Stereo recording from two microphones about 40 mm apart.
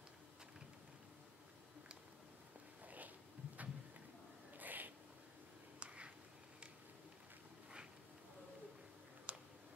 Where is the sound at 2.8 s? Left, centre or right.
Right.